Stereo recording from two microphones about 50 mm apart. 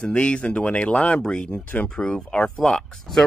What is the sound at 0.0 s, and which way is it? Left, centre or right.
Speech, left.